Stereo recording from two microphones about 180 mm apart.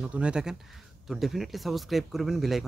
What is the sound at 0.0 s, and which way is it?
Speech, 5° right (ahead or behind).